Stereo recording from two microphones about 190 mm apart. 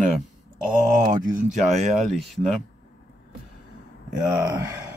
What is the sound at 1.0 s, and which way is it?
Speech, 45° right (ahead or behind).